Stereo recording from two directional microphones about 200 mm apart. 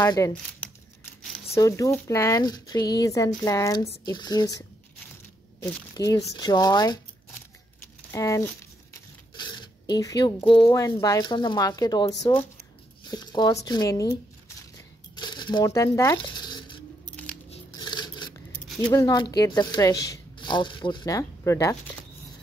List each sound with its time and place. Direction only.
0.0 s speech: 15° left (ahead or behind)
1.5 s speech: 15° left (ahead or behind)
8.1 s speech: 15° left (ahead or behind)
13.1 s speech: 20° left (ahead or behind)
15.1 s a sound: 20° left (ahead or behind)
17.7 s scissors: 20° left (ahead or behind)
18.9 s speech: 20° left (ahead or behind)